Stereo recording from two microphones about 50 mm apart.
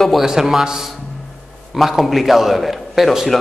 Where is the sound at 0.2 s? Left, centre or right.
Centre.